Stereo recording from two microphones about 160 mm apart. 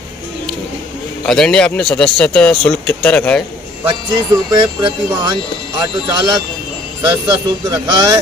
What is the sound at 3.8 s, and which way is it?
Speech, 30° right (ahead or behind).